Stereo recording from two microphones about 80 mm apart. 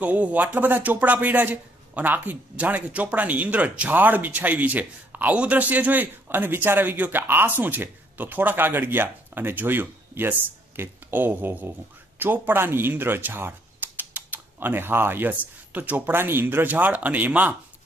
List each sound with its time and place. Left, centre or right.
0.0 s speech: centre